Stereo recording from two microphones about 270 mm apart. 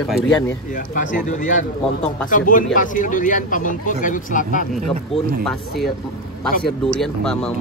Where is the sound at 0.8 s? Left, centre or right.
Left.